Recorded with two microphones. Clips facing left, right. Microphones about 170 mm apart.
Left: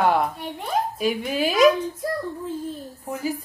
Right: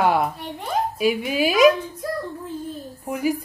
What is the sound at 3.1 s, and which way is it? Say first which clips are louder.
Speech: right 4 dB; 15° right (ahead or behind).